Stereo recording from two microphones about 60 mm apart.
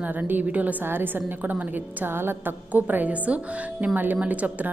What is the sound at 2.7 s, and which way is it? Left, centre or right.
A woman's voice, right.